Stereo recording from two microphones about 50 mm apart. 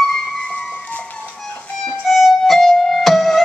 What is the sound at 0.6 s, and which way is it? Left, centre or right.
Music, centre.